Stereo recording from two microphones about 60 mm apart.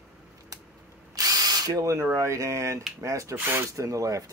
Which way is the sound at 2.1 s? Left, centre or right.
Right.